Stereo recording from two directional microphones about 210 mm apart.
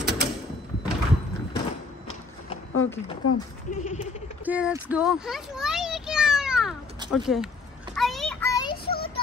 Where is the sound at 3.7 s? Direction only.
35° left (ahead or behind).